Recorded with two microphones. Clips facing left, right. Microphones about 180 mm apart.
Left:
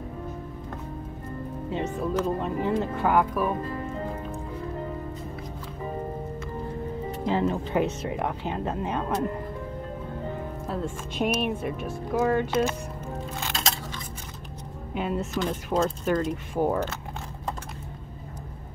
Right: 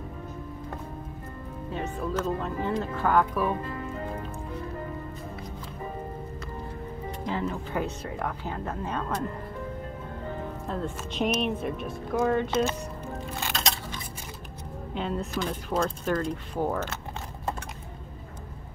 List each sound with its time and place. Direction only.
1.7 s speech: 15° left (ahead or behind)
7.2 s speech: 25° left (ahead or behind)
10.7 s speech: 5° left (ahead or behind)
15.0 s speech: 10° left (ahead or behind)
15.3 s speech: 10° right (ahead or behind)
15.8 s speech: 5° left (ahead or behind)